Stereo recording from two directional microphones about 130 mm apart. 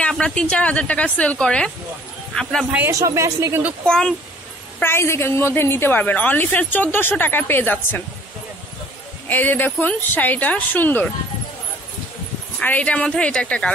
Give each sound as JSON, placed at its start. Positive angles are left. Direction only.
{"t": 0.0, "sound": "a woman's voice", "side_deg": 5}
{"t": 2.7, "sound": "speech", "side_deg": -20}
{"t": 3.8, "sound": "speech", "side_deg": 5}
{"t": 4.7, "sound": "a woman's voice", "side_deg": 15}
{"t": 9.3, "sound": "a woman's voice", "side_deg": 15}
{"t": 12.5, "sound": "a woman's voice", "side_deg": 10}